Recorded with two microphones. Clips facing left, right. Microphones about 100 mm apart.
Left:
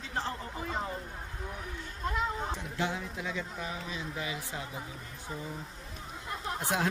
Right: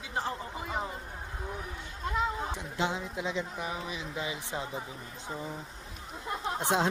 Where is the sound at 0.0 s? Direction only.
10° right (ahead or behind).